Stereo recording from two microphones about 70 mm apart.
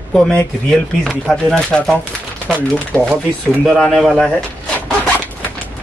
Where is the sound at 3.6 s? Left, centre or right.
Centre.